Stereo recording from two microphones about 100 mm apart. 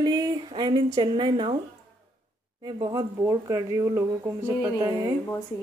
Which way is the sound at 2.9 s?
30° right (ahead or behind).